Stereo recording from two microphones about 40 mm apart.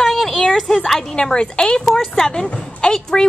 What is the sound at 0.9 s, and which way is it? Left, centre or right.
Speech, centre.